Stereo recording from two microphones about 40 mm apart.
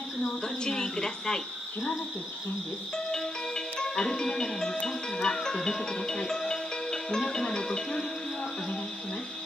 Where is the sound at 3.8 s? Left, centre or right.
Centre.